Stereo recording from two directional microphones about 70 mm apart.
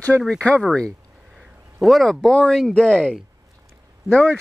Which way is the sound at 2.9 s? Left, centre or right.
Centre.